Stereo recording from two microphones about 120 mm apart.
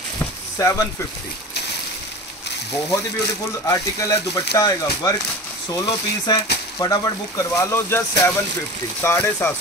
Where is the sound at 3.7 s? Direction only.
25° left (ahead or behind).